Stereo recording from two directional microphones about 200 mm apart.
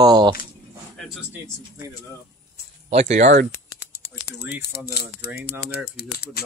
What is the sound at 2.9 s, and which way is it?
Speech, 35° right (ahead or behind).